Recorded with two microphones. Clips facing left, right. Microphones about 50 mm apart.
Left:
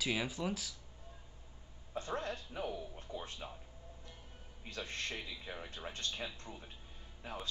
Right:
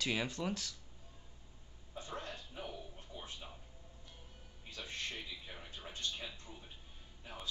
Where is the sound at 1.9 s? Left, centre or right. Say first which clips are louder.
Left 6 dB; left.